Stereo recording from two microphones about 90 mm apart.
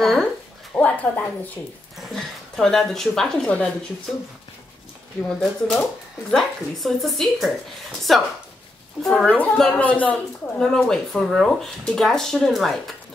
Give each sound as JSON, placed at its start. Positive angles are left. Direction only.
{"t": 0.0, "sound": "speech", "side_deg": 5}
{"t": 0.7, "sound": "a sound", "side_deg": 15}
{"t": 2.0, "sound": "speech", "side_deg": 5}
{"t": 5.4, "sound": "a woman's voice", "side_deg": 0}
{"t": 10.6, "sound": "speech", "side_deg": 5}